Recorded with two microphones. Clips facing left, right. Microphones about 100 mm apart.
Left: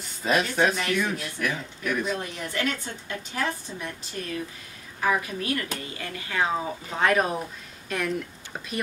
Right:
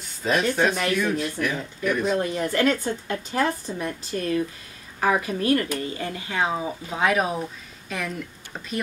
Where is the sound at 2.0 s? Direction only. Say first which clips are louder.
Right 7 dB; 45° right (ahead or behind).